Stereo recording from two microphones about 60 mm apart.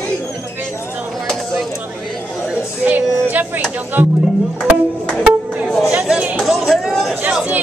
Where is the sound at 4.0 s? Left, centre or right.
Right.